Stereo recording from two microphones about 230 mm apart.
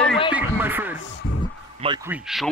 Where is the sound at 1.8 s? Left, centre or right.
Centre.